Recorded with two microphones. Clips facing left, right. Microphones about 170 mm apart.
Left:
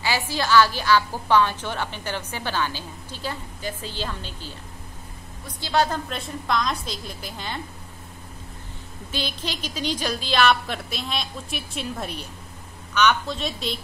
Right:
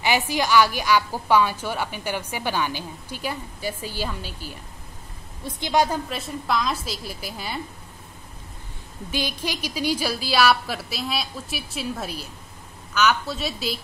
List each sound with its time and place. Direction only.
0.0 s a woman's voice: 20° right (ahead or behind)
5.4 s a woman's voice: 25° right (ahead or behind)
5.7 s a woman's voice: 10° right (ahead or behind)
9.1 s a woman's voice: 10° right (ahead or behind)